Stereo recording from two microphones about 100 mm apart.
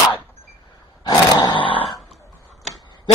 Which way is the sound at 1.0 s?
45° left (ahead or behind).